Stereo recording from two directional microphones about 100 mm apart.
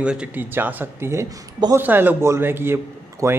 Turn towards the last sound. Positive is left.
turn(degrees=-25)  # may be behind; listen again after turning